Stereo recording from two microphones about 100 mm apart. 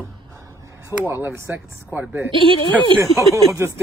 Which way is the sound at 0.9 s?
30° left (ahead or behind).